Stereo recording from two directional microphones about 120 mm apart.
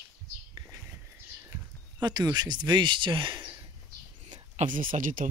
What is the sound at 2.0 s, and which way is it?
Speech, 35° right (ahead or behind).